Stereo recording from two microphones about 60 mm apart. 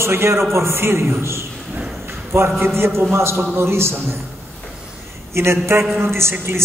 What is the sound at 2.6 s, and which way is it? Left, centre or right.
A man's voice, right.